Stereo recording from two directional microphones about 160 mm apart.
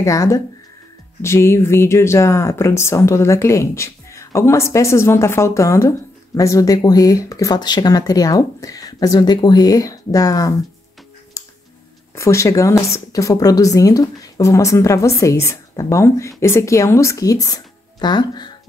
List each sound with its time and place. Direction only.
0.0 s speech: 20° left (ahead or behind)
11.4 s music: 20° left (ahead or behind)
12.2 s speech: 20° left (ahead or behind)